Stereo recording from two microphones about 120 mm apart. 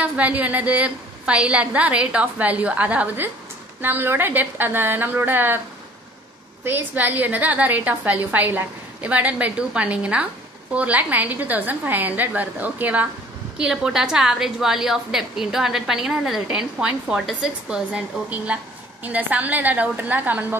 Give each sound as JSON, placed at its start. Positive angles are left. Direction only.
{"t": 0.0, "sound": "a woman's voice", "side_deg": -10}
{"t": 6.6, "sound": "a woman's voice", "side_deg": -15}